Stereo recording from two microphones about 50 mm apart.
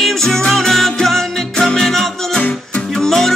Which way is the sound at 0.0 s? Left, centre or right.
Centre.